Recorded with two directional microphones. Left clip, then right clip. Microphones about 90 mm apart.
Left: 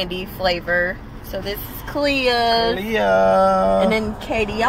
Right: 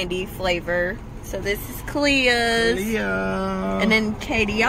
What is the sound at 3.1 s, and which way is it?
Music, 40° left (ahead or behind).